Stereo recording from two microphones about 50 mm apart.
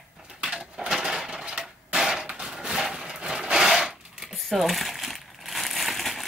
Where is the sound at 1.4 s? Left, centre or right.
Centre.